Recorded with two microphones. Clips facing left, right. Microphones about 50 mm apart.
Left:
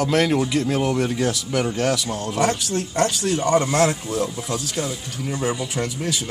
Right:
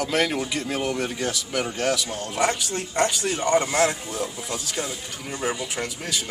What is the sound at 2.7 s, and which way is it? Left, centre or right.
Speech, centre.